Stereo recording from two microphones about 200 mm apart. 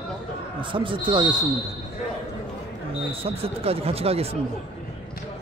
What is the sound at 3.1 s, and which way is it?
Speech, 30° right (ahead or behind).